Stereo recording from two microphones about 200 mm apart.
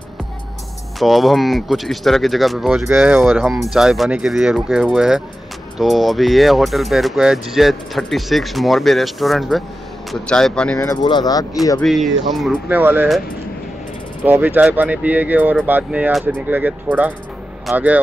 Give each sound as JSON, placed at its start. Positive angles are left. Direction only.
{"t": 0.9, "sound": "speech", "side_deg": 0}
{"t": 10.9, "sound": "speech", "side_deg": 20}
{"t": 11.8, "sound": "speech", "side_deg": 0}
{"t": 14.2, "sound": "speech", "side_deg": -10}